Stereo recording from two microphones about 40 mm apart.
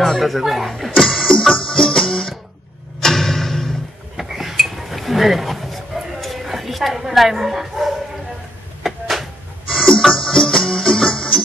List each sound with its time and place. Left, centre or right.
0.0 s speech: centre
1.6 s music: centre
3.0 s a sound: centre
4.2 s dishes: centre
8.8 s a sound: centre
10.0 s music: centre
10.3 s music: centre